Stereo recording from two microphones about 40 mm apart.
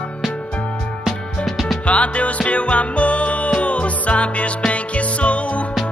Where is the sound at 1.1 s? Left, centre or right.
Centre.